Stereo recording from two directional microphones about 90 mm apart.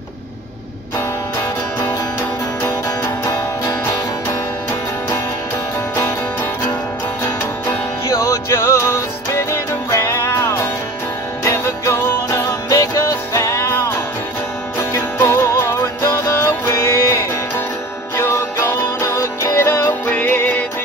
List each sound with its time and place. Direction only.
3.0 s music: 40° left (ahead or behind)
8.2 s music: 35° left (ahead or behind)